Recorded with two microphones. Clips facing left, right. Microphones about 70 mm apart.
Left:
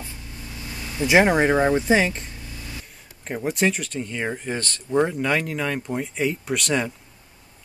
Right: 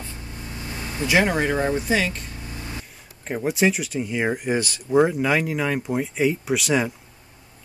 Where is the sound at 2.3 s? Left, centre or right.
Right.